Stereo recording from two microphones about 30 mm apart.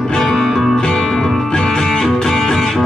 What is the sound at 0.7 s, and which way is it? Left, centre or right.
Music, centre.